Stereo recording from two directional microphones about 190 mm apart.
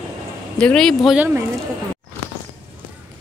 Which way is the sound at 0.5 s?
5° left (ahead or behind).